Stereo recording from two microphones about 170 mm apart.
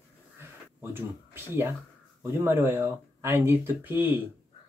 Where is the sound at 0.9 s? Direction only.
15° right (ahead or behind).